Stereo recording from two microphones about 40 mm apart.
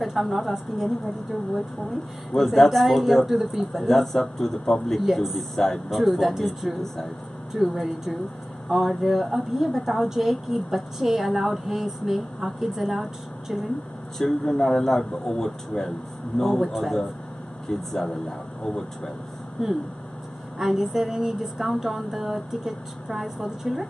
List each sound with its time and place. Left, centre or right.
0.0 s a woman's voice: centre
3.8 s speech: centre
5.0 s a woman's voice: centre
14.1 s speech: centre
16.6 s a woman's voice: centre
17.6 s speech: centre
19.6 s speech: centre
20.5 s a woman's voice: centre